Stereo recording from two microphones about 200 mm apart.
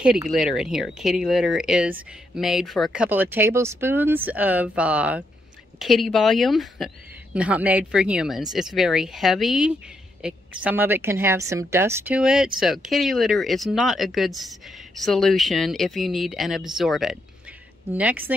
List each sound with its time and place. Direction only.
0.3 s speech: centre (ahead or behind)